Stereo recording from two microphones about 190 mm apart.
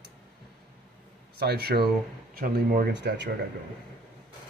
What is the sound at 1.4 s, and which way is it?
Speech, 55° right (ahead or behind).